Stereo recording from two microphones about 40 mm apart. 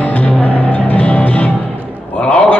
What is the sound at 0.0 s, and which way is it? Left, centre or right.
Music, left.